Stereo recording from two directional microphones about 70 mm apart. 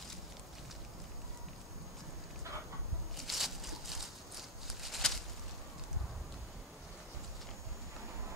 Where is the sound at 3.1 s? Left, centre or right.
Centre.